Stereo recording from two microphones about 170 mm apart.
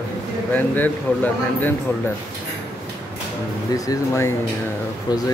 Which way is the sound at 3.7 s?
20° left (ahead or behind).